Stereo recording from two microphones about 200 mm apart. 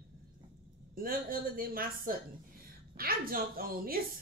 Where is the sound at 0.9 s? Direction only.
45° right (ahead or behind).